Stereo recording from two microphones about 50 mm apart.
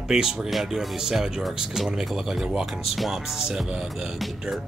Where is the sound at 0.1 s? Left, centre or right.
Centre.